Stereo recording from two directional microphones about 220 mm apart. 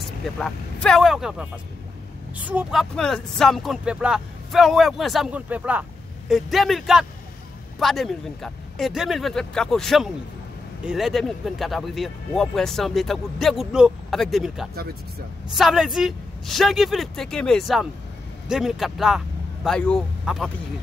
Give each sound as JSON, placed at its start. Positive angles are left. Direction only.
{"t": 0.2, "sound": "speech", "side_deg": 0}